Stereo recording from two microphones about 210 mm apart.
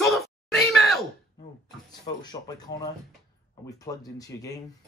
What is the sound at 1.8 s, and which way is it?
Speech, 20° left (ahead or behind).